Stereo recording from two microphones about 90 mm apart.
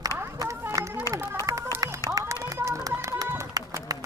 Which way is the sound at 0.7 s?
40° right (ahead or behind).